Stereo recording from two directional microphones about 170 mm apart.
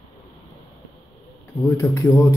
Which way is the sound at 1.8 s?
15° left (ahead or behind).